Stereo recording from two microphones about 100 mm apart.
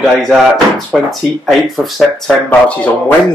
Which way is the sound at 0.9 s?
5° right (ahead or behind).